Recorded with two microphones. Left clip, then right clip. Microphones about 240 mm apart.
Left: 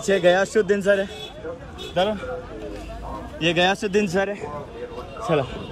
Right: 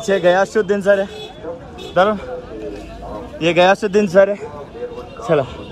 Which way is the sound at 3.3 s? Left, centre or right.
Right.